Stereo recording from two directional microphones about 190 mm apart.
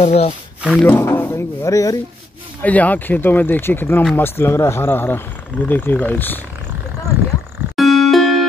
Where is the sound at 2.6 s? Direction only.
10° left (ahead or behind).